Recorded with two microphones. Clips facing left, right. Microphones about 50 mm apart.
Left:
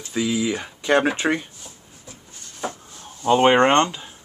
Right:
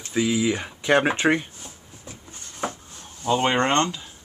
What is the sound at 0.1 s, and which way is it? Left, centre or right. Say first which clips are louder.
Speech: right 1 dB; centre.